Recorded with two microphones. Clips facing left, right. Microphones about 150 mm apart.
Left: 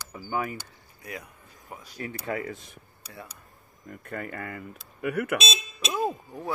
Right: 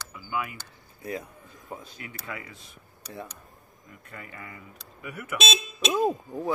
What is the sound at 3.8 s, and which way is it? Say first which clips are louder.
Speech: left 9 dB; 55° left (ahead or behind).